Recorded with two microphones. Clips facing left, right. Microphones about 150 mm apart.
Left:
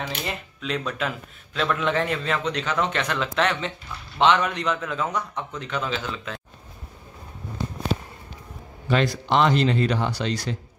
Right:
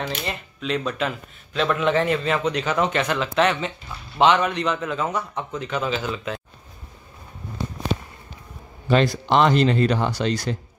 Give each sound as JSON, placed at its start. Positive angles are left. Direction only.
{"t": 0.6, "sound": "a man's voice", "side_deg": 0}
{"t": 8.8, "sound": "a man's voice", "side_deg": -30}
{"t": 9.3, "sound": "speech", "side_deg": -50}